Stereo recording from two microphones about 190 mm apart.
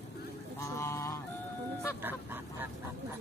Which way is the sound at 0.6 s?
15° left (ahead or behind).